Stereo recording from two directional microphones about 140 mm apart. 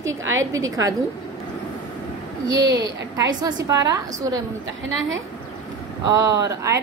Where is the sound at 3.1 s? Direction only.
25° right (ahead or behind).